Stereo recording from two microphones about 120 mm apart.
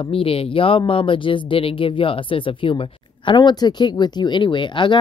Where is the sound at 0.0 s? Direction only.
50° left (ahead or behind).